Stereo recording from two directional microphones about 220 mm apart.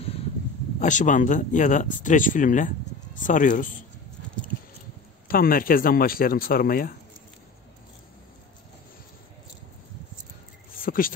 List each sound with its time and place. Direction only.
0.7 s speech: 35° left (ahead or behind)
5.3 s speech: 40° left (ahead or behind)
10.7 s a sound: 40° left (ahead or behind)